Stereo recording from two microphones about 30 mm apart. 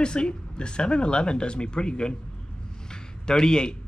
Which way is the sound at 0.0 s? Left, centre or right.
Left.